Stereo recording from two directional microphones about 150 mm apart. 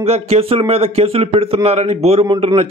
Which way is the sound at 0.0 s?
45° right (ahead or behind).